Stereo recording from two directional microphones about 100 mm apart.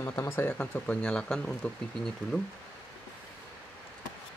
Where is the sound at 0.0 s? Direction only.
25° left (ahead or behind); by 2.5 s 5° left (ahead or behind).